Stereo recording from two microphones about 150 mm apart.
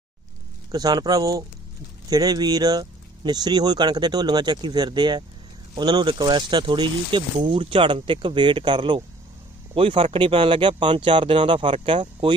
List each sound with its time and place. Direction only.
0.7 s speech: 25° right (ahead or behind)